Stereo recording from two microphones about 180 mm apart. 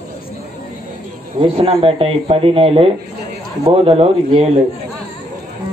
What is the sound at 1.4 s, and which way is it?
Speech, 30° right (ahead or behind).